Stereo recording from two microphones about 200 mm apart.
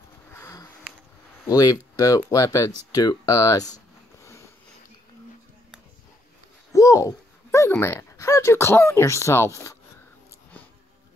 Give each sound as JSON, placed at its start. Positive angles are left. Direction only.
{"t": 0.3, "sound": "a sound", "side_deg": 15}
{"t": 1.5, "sound": "speech", "side_deg": 20}
{"t": 6.7, "sound": "speech", "side_deg": 15}